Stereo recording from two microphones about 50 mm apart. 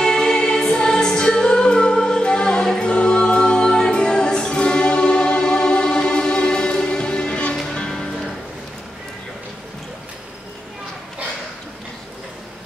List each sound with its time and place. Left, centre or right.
0.0 s music: centre